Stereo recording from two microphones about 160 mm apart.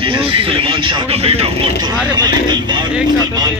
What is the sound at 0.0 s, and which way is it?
Speech, 35° right (ahead or behind).